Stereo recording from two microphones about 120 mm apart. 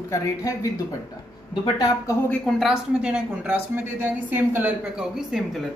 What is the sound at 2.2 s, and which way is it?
Speech, 5° left (ahead or behind).